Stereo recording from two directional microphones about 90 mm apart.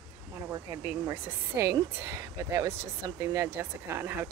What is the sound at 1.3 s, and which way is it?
A woman's voice, 30° right (ahead or behind).